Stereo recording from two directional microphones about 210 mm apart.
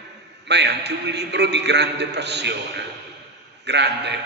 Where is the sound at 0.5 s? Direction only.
55° right (ahead or behind).